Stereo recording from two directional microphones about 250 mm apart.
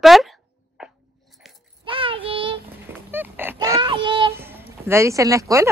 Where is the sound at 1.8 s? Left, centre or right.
Right.